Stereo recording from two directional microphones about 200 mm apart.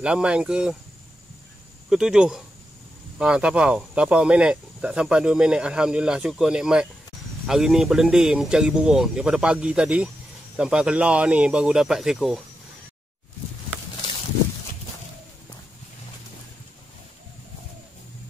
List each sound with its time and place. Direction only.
0.0 s speech: 5° right (ahead or behind)
1.9 s speech: 5° right (ahead or behind)